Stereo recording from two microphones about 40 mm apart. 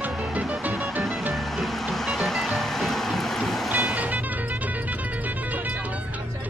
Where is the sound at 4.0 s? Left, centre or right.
Right.